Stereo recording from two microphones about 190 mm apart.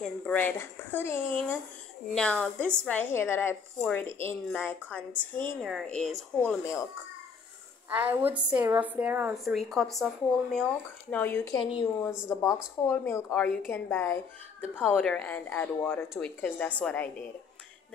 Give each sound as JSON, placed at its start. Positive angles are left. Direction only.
{"t": 0.0, "sound": "speech", "side_deg": 5}
{"t": 5.6, "sound": "speech", "side_deg": 0}
{"t": 6.6, "sound": "speech", "side_deg": 15}
{"t": 7.9, "sound": "a woman's voice", "side_deg": -10}